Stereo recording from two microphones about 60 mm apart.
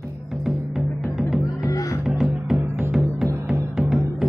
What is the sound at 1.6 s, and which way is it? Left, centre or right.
Music, left.